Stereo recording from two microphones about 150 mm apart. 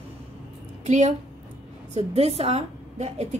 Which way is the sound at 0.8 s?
50° right (ahead or behind).